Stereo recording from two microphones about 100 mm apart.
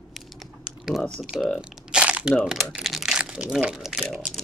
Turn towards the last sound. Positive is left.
turn(degrees=0)  # may be behind; listen again after turning